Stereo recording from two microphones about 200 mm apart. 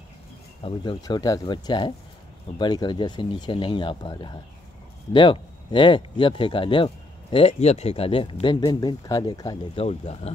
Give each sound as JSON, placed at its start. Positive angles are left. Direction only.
{"t": 0.7, "sound": "speech", "side_deg": 20}
{"t": 9.8, "sound": "speech", "side_deg": 30}